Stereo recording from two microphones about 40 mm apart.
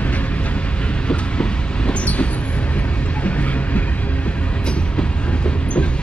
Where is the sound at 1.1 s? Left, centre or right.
Left.